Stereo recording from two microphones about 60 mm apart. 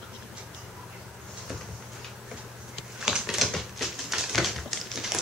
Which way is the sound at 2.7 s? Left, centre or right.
Centre.